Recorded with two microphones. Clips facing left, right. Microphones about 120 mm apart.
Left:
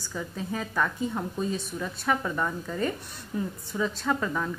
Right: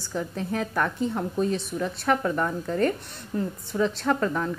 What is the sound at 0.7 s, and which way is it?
Speech, 10° right (ahead or behind).